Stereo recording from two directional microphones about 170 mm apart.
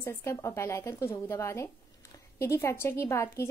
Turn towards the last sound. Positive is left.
turn(degrees=15)  # may be behind; listen again after turning